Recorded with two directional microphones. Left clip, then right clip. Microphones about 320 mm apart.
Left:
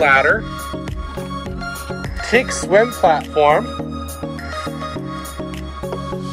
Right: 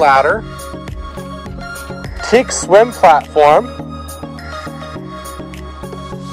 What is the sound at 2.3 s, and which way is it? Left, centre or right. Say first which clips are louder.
Speech: right 4 dB; right.